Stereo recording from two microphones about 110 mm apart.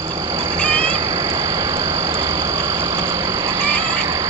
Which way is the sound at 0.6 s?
55° right (ahead or behind).